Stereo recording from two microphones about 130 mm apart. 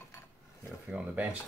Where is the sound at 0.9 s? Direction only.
10° right (ahead or behind).